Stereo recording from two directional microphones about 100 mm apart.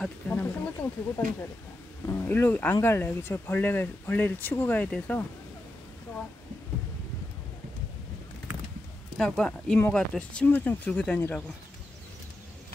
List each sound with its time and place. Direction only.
0.3 s speech: 20° left (ahead or behind)
9.1 s speech: 5° left (ahead or behind)
9.5 s speech: 15° left (ahead or behind)